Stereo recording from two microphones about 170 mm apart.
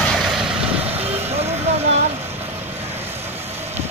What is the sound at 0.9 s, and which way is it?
Vehicle, 35° right (ahead or behind).